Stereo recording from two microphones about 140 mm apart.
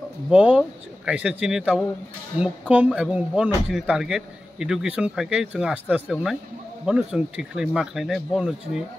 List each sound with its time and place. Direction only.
0.3 s speech: 5° right (ahead or behind)